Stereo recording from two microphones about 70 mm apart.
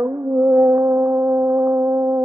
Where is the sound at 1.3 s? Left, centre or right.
Right.